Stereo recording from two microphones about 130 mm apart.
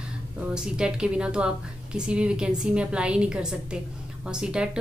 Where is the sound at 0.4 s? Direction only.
5° right (ahead or behind).